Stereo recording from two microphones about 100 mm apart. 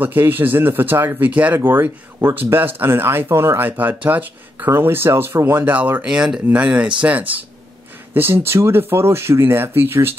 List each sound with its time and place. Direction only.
0.0 s speech: 20° right (ahead or behind)